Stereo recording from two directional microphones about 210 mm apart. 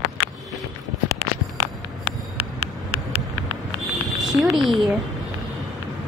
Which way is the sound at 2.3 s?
90° right.